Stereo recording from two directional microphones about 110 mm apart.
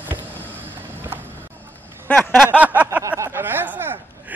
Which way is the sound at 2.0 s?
10° left (ahead or behind).